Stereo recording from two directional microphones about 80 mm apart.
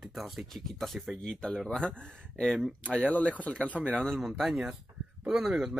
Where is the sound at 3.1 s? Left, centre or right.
Centre.